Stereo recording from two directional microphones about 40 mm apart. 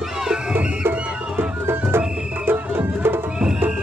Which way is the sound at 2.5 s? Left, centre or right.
Right.